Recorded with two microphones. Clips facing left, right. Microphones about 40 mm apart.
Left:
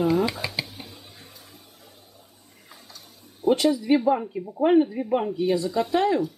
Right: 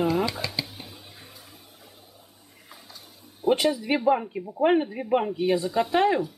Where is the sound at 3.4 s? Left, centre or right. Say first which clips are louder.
Left 2 dB; right.